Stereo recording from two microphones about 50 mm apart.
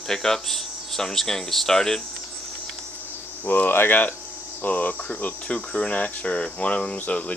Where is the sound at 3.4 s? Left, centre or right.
Left.